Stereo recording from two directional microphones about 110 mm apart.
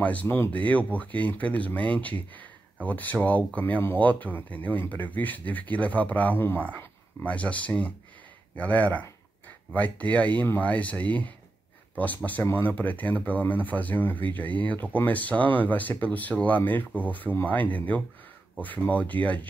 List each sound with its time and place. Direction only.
0.0 s speech: 15° left (ahead or behind)